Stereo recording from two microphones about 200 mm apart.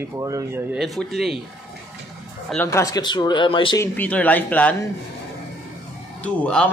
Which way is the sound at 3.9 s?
5° left (ahead or behind).